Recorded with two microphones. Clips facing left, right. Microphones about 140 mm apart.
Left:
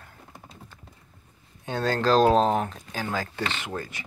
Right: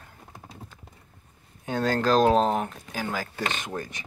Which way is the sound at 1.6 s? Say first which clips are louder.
Even; 10° right (ahead or behind).